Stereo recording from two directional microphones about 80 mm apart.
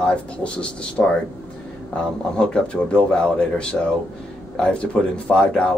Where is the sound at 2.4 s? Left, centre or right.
Centre.